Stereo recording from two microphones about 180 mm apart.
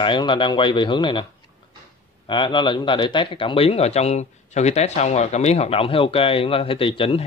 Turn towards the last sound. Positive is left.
turn(degrees=30)  # may be behind; listen again after turning